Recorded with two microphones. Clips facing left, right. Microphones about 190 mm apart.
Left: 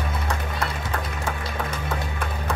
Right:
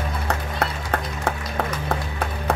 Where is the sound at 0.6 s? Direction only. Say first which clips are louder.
Right 5 dB; 60° right (ahead or behind).